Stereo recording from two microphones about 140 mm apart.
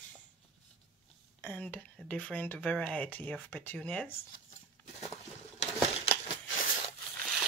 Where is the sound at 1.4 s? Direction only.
10° left (ahead or behind).